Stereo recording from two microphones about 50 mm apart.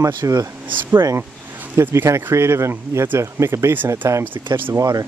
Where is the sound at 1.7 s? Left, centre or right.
Right.